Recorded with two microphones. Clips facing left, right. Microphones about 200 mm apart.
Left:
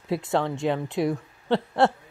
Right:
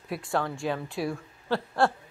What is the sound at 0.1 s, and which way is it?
Speech, 20° left (ahead or behind).